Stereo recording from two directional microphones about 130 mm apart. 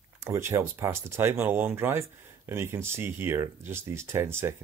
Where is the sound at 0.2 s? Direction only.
20° right (ahead or behind).